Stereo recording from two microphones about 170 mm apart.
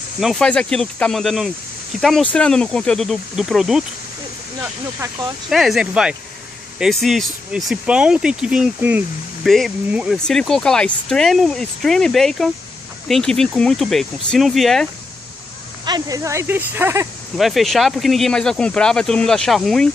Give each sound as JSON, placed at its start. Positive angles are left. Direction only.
{"t": 0.2, "sound": "speech", "side_deg": 0}
{"t": 5.5, "sound": "speech", "side_deg": 0}
{"t": 15.8, "sound": "speech", "side_deg": -25}
{"t": 17.4, "sound": "speech", "side_deg": 0}